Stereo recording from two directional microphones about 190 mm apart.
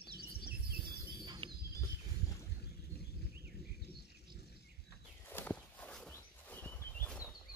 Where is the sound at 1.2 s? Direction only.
25° right (ahead or behind).